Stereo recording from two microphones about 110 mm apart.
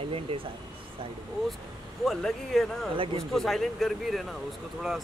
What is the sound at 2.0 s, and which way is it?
Speech, 5° left (ahead or behind).